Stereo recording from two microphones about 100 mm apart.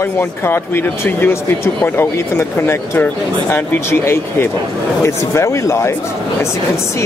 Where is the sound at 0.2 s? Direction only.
25° left (ahead or behind).